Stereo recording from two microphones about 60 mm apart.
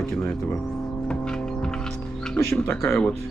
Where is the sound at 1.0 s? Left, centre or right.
Centre.